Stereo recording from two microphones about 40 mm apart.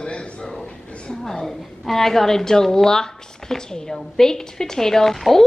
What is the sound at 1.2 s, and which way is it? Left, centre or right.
A woman's voice, centre.